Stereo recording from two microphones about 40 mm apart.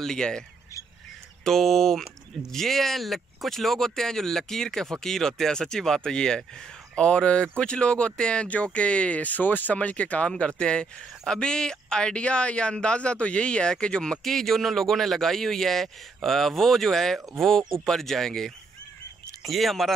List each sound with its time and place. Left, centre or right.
0.0 s speech: centre
1.4 s speech: centre; by 9.8 s left
9.8 s speech: left
10.3 s speech: left
14.2 s speech: centre
19.4 s speech: centre